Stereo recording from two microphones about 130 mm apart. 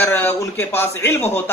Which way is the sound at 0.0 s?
15° left (ahead or behind).